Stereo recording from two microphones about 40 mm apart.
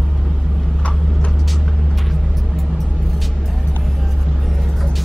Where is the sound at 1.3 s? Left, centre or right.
Centre.